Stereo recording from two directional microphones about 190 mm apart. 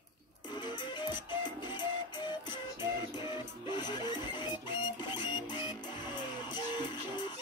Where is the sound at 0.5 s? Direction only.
25° left (ahead or behind).